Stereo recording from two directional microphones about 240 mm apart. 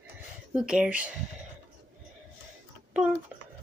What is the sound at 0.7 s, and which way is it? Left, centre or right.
Speech, centre.